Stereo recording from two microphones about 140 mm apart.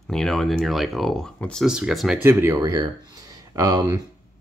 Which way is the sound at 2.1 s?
15° right (ahead or behind).